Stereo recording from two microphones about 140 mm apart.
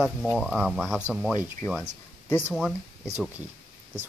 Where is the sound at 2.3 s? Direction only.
15° left (ahead or behind).